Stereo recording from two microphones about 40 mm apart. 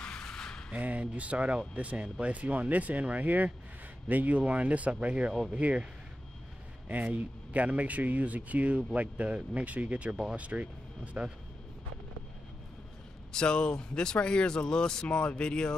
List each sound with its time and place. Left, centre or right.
0.0 s a sound: centre
0.7 s speech: right
6.9 s speech: right
13.3 s speech: left